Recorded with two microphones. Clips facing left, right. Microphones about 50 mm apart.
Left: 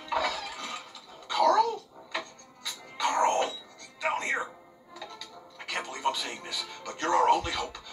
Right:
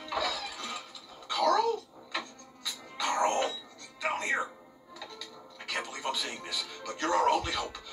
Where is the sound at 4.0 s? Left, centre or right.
Left.